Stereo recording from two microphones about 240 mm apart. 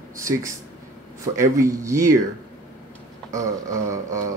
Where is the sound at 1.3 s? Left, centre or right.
Centre.